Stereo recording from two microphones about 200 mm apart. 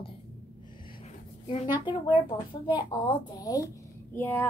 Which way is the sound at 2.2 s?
25° left (ahead or behind).